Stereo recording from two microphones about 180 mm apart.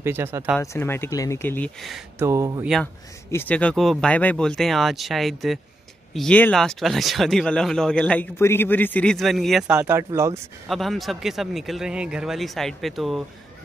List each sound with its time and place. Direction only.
0.0 s speech: 15° right (ahead or behind)
0.6 s speech: 10° left (ahead or behind)
1.8 s speech: centre (ahead or behind)
2.1 s speech: 15° right (ahead or behind)
2.8 s speech: 10° left (ahead or behind); by 10.4 s 15° right (ahead or behind)
10.7 s speech: centre (ahead or behind)